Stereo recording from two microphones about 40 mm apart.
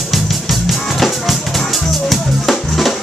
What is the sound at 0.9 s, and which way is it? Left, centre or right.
Music, centre.